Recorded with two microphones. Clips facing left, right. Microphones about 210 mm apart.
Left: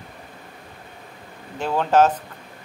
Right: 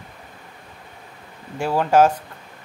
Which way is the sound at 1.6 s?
10° right (ahead or behind).